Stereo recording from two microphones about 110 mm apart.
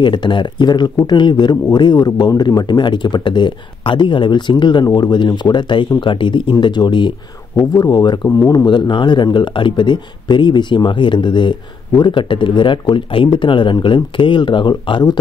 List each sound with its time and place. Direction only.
0.0 s speech: 45° left (ahead or behind)
8.3 s speech: 25° left (ahead or behind)
8.6 s speech: 45° left (ahead or behind)